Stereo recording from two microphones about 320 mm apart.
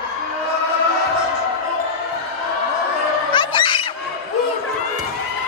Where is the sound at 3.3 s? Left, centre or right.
Centre.